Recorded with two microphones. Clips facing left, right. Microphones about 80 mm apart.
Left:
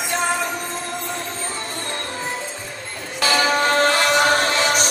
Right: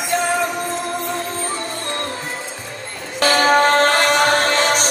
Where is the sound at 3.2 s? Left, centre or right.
Right.